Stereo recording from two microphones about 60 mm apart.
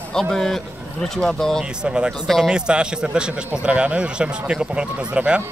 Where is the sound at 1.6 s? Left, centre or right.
Centre.